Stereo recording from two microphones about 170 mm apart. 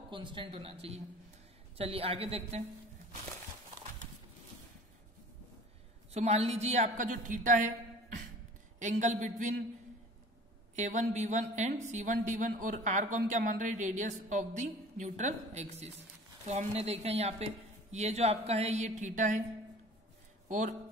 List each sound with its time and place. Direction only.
0.1 s a woman's voice: 30° right (ahead or behind)
6.1 s a woman's voice: 40° right (ahead or behind)
8.7 s a woman's voice: 45° right (ahead or behind)
10.8 s a woman's voice: 45° right (ahead or behind)
20.4 s speech: 45° right (ahead or behind)